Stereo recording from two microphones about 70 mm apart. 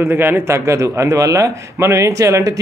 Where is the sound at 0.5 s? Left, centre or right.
Right.